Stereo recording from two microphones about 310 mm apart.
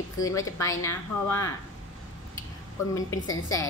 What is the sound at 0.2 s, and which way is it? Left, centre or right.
A woman's voice, centre.